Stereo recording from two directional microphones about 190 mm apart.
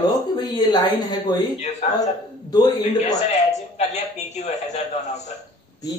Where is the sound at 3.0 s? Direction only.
35° left (ahead or behind).